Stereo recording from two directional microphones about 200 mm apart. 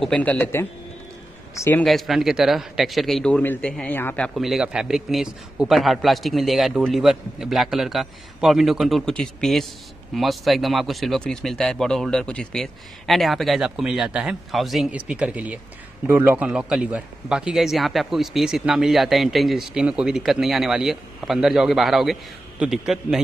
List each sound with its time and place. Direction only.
0.0 s a man's voice: 5° left (ahead or behind)
1.9 s a man's voice: centre (ahead or behind)